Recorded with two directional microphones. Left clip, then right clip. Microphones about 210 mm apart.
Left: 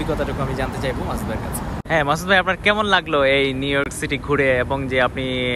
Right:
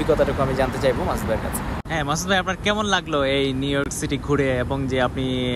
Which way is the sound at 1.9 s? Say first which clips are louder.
Left 6 dB; 15° right (ahead or behind).